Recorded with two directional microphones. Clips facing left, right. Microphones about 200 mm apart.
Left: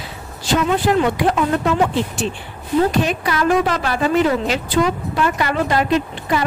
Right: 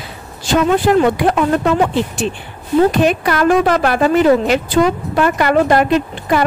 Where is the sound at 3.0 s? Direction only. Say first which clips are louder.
Right 5 dB; 60° right (ahead or behind).